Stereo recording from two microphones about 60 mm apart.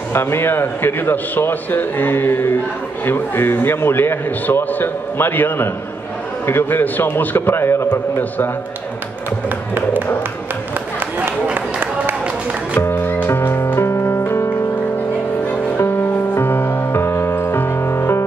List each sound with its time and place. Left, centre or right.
0.1 s a man's voice: left
7.9 s a man's voice: left
12.7 s music: left
15.8 s music: left